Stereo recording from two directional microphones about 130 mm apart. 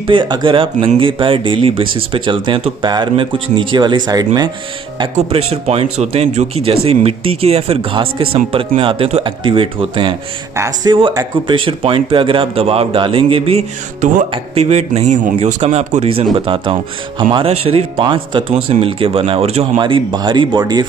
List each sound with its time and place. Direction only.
0.0 s speech: 40° right (ahead or behind)
5.1 s speech: 50° right (ahead or behind)
10.5 s speech: 25° right (ahead or behind)
10.9 s a man's voice: 40° right (ahead or behind)
19.8 s speech: 35° right (ahead or behind)